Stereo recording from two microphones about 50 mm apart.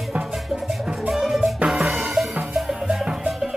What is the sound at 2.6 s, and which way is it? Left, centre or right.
Music, centre.